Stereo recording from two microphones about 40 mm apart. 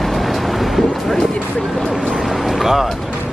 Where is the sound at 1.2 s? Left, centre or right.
Centre.